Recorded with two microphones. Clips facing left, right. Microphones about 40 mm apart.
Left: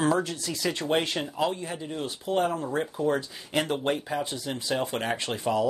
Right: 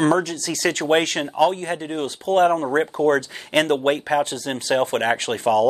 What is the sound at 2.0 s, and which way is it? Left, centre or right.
Speech, right.